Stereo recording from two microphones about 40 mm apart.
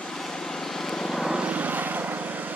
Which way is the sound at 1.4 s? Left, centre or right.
Right.